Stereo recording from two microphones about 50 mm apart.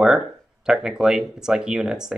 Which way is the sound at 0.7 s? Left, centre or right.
Centre.